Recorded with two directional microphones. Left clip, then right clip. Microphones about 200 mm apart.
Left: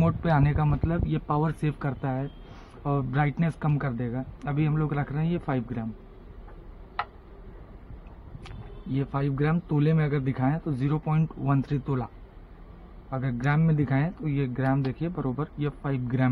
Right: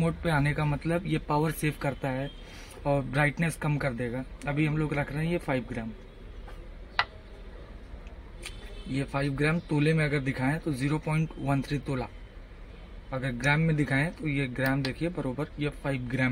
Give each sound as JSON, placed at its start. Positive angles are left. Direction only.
{"t": 0.0, "sound": "speech", "side_deg": 45}
{"t": 8.5, "sound": "speech", "side_deg": 40}
{"t": 13.1, "sound": "speech", "side_deg": 35}